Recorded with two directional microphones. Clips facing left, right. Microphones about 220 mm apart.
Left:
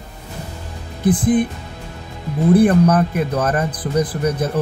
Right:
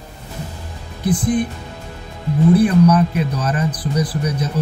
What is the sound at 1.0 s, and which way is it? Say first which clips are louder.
Speech: left 3 dB; 55° left (ahead or behind).